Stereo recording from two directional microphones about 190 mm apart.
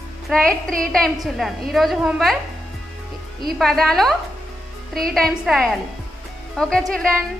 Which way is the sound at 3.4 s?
Centre (ahead or behind).